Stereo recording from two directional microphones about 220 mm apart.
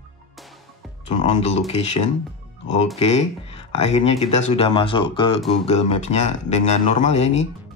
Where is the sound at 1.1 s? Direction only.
30° left (ahead or behind).